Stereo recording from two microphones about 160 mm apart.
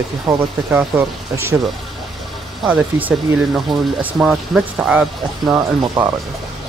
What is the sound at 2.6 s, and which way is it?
Speech, 5° right (ahead or behind).